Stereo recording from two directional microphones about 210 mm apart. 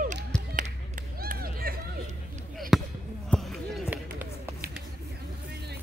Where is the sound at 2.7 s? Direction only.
Centre (ahead or behind).